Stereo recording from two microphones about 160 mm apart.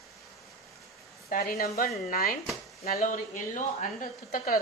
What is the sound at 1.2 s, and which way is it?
A woman's voice, 70° left (ahead or behind).